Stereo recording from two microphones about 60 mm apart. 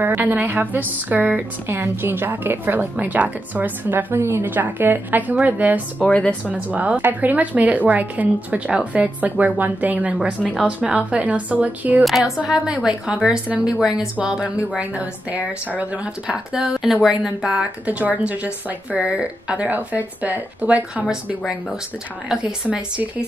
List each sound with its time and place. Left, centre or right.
0.0 s a woman's voice: right
5.9 s speech: left
6.7 s speech: right
10.5 s speech: centre
12.0 s speech: centre
12.4 s a woman's voice: centre
16.5 s speech: centre
22.3 s speech: centre